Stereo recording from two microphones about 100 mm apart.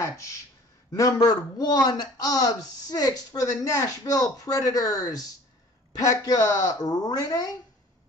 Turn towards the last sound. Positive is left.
turn(degrees=40)  # may be behind; listen again after turning